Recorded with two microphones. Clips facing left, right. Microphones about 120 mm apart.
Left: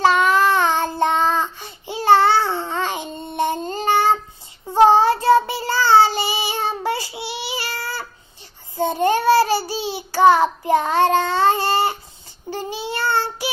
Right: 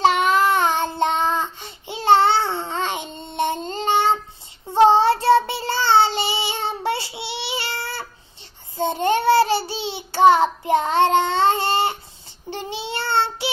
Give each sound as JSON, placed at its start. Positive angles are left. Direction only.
{"t": 0.0, "sound": "child singing", "side_deg": -20}